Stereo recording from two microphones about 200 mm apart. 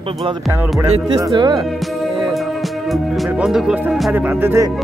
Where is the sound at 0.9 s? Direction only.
25° right (ahead or behind).